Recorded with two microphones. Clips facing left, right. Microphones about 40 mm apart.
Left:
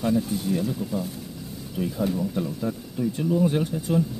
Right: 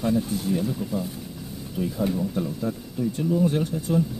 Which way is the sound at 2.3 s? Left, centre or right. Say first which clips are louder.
Even; centre.